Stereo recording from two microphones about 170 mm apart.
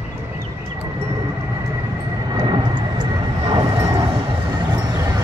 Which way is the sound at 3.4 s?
20° right (ahead or behind).